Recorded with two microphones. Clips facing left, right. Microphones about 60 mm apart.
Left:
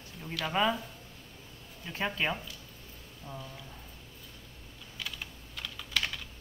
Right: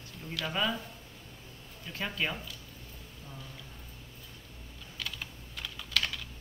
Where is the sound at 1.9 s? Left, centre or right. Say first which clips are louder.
Left 2 dB; centre.